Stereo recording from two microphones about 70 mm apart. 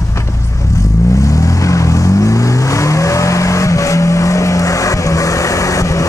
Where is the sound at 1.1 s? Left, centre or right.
Left.